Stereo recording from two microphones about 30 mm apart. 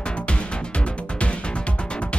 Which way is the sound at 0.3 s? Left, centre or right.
Left.